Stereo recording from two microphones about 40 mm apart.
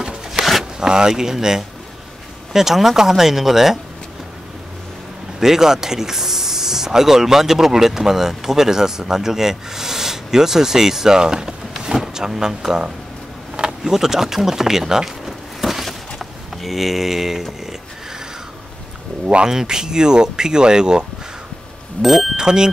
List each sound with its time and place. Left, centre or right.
0.0 s zipper: centre
0.7 s speech: centre
5.4 s speech: centre
15.6 s a sound: centre
19.4 s speech: centre
22.0 s speech: centre
22.4 s speech: centre